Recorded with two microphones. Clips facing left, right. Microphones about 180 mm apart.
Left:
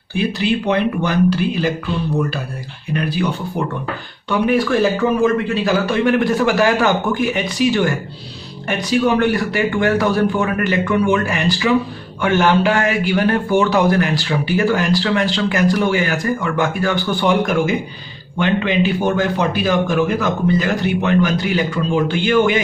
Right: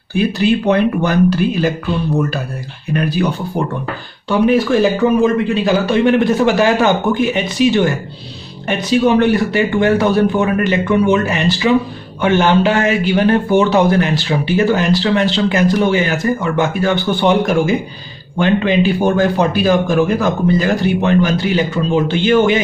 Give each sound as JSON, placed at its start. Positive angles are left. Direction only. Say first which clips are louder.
{"t": 0.1, "sound": "speech", "louder": "right 4 dB", "side_deg": -45}
{"t": 2.9, "sound": "speech", "louder": "right 3 dB", "side_deg": -45}
{"t": 4.3, "sound": "a man's voice", "louder": "right 3 dB", "side_deg": -25}